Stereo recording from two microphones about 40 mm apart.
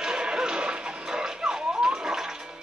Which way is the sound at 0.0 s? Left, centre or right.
Centre.